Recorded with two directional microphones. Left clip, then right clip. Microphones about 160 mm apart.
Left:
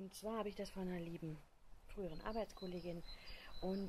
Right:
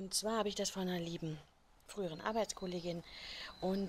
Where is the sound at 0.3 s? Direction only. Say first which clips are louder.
Right 6 dB; 25° right (ahead or behind).